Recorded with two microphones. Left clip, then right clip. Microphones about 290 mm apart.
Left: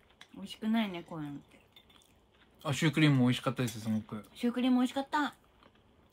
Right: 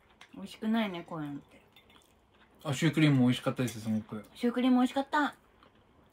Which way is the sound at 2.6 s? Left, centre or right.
Centre.